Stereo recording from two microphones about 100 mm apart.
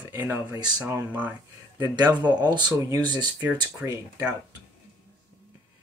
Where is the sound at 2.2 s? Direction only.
45° right (ahead or behind).